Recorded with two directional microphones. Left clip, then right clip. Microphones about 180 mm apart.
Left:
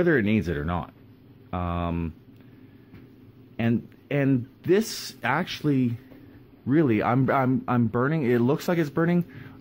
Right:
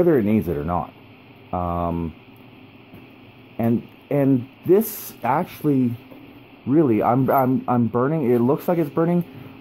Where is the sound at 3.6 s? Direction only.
5° right (ahead or behind).